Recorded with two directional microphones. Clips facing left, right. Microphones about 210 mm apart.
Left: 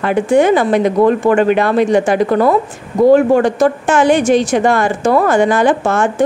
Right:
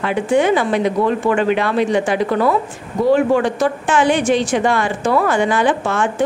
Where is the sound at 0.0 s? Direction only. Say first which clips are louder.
Left 4 dB; 45° left (ahead or behind).